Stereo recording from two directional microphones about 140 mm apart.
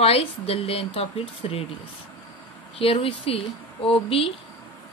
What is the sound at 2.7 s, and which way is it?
Speech, 40° left (ahead or behind).